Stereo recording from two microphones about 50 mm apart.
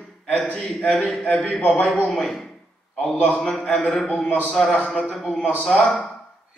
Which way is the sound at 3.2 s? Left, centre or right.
Left.